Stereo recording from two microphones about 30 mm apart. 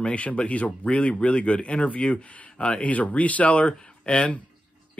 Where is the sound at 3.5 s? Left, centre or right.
Left.